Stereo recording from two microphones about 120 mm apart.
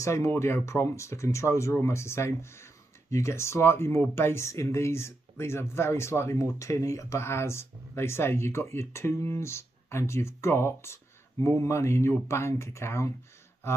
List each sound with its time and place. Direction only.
0.0 s speech: 25° left (ahead or behind)